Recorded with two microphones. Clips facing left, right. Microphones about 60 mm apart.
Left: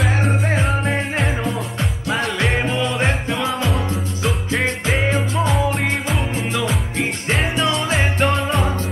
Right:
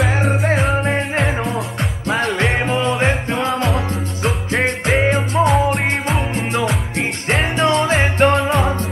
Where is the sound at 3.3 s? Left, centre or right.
Right.